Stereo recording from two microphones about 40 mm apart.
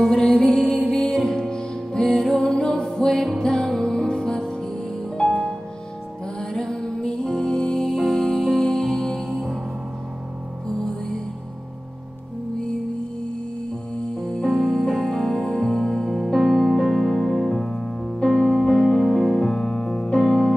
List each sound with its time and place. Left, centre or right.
0.0 s music: centre
6.5 s music: centre
9.3 s music: centre
10.8 s music: centre
14.2 s music: centre
14.9 s music: centre
16.0 s music: centre
20.2 s music: centre